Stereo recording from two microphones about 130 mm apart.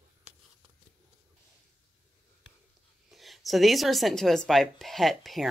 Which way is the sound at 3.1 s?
Centre (ahead or behind).